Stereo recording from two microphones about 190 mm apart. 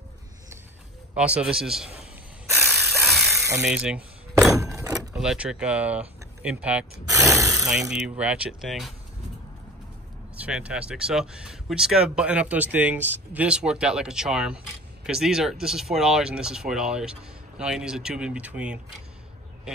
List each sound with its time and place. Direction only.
1.1 s speech: 5° right (ahead or behind)
2.6 s a sound: centre (ahead or behind)
4.6 s keys jangling: 15° right (ahead or behind)
5.1 s speech: 5° right (ahead or behind)
7.3 s a sound: 15° right (ahead or behind)
8.2 s speech: 5° right (ahead or behind)
10.3 s speech: 5° right (ahead or behind)